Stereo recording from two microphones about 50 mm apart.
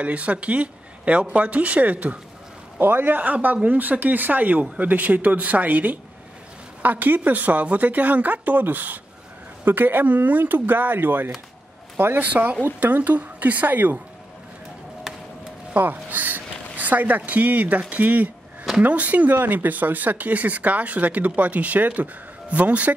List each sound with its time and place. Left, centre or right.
0.0 s speech: right
2.8 s speech: right
12.2 s speech: right
15.7 s speech: right